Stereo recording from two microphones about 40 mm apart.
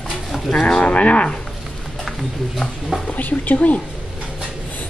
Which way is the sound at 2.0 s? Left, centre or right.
Centre.